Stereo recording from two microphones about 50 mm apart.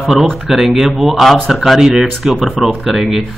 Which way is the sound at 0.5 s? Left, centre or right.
Centre.